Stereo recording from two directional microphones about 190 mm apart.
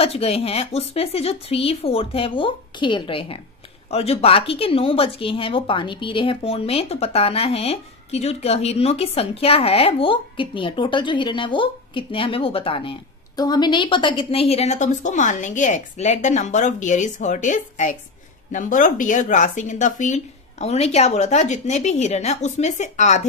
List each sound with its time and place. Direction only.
0.0 s speech: 30° left (ahead or behind)